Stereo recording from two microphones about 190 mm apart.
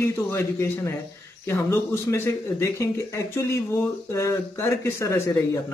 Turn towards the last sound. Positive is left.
turn(degrees=15)  # may be behind; listen again after turning